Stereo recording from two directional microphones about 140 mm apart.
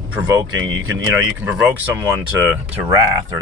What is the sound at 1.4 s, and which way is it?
Speech, 10° right (ahead or behind).